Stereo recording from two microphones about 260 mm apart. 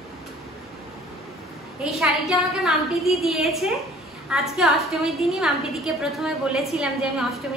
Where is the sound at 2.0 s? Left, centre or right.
Centre.